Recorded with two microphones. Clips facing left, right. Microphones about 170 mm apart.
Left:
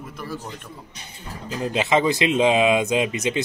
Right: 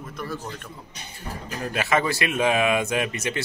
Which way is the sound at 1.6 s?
20° left (ahead or behind).